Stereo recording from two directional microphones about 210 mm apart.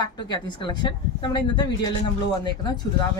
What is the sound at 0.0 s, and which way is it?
Speech, 20° left (ahead or behind).